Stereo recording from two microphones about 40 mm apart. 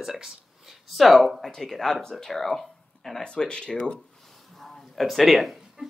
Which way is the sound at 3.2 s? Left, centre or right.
Left.